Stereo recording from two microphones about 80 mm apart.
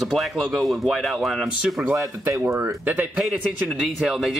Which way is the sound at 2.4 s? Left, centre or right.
Right.